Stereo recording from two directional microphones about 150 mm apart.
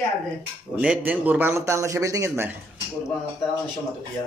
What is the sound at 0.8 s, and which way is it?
Speech, 10° right (ahead or behind).